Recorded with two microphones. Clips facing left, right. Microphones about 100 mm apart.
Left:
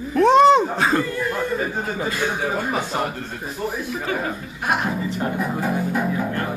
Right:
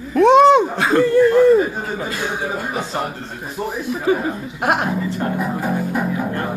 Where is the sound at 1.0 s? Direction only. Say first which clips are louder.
Right 12 dB; 35° right (ahead or behind).